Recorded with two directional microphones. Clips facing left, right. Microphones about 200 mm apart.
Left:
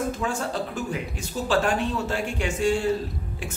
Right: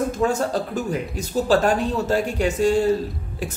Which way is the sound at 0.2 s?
45° right (ahead or behind).